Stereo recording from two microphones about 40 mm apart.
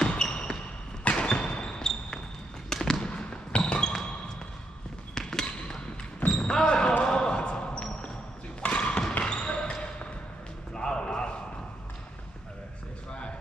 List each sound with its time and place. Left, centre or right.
0.3 s basketball bounce: left
2.7 s fireworks: centre
3.0 s basketball bounce: left
3.8 s music: centre
5.1 s basketball bounce: centre
6.6 s basketball bounce: left
8.5 s a sound: left